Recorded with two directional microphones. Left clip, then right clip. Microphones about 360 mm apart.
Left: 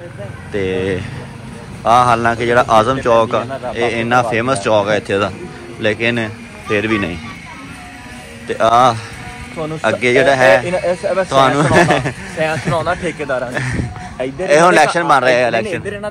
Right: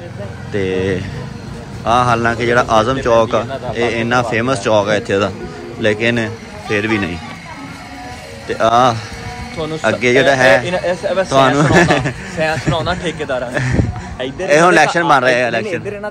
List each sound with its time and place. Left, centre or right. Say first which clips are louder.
0.6 s a man's voice: right 1 dB; centre
8.5 s speech: left 1 dB; centre
10.7 s speech: even; centre
11.2 s speech: even; centre
12.4 s speech: even; left
14.5 s speech: even; centre